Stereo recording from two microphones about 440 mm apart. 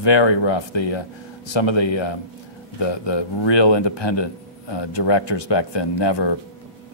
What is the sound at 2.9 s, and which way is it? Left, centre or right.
Speech, left.